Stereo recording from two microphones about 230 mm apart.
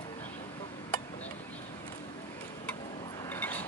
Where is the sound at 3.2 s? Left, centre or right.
Centre.